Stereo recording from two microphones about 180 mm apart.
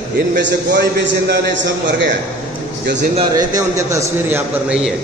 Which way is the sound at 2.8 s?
65° right (ahead or behind).